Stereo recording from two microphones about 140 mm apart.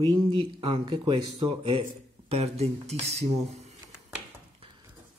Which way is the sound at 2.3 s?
45° right (ahead or behind).